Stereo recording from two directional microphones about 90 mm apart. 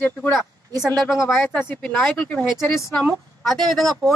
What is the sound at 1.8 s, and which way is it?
Speech, 10° left (ahead or behind).